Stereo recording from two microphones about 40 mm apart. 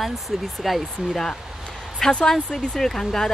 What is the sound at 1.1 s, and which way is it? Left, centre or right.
A woman's voice, centre.